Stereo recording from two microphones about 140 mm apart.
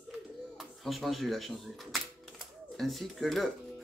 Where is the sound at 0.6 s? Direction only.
Centre (ahead or behind).